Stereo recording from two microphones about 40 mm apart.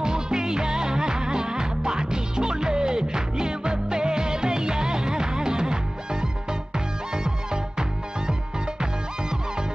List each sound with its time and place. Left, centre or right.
0.0 s music: centre